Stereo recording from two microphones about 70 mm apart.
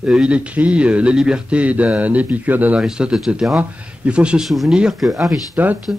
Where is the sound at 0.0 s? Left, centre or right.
Centre.